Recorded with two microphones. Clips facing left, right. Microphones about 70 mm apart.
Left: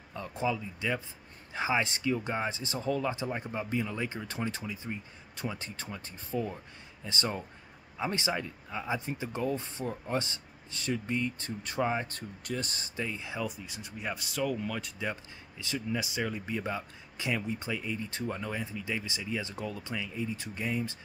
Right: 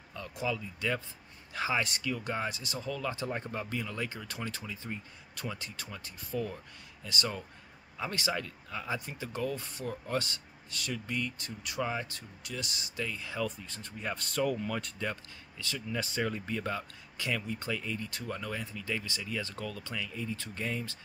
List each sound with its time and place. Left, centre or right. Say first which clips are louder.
0.1 s speech: left 3 dB; left
3.3 s speech: left 2 dB; centre; by 12.1 s left
12.1 s speech: left 6 dB; left
13.5 s speech: left 1 dB; centre
16.5 s speech: left 1 dB; centre